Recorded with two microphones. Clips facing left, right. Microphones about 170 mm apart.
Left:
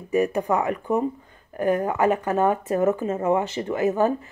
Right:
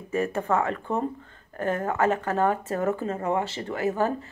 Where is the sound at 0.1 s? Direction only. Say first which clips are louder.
Left 4 dB; 15° left (ahead or behind).